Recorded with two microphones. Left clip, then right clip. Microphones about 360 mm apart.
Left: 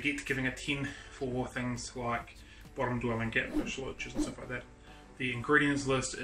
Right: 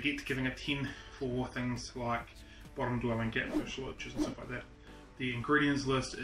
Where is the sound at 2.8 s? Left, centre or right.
Centre.